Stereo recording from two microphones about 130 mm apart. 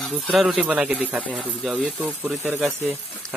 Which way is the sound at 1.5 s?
Centre (ahead or behind).